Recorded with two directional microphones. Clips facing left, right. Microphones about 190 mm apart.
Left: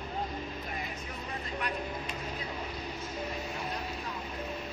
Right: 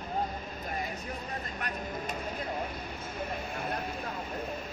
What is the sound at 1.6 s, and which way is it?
Vehicle, 45° right (ahead or behind).